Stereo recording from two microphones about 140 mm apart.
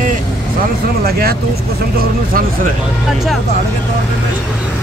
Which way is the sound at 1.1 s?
90° right.